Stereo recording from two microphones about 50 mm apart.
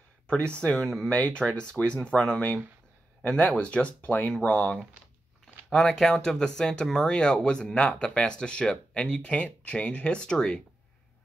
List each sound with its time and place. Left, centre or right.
0.3 s speech: left
5.4 s speech: centre